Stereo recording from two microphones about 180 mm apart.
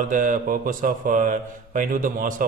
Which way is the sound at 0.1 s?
50° right (ahead or behind).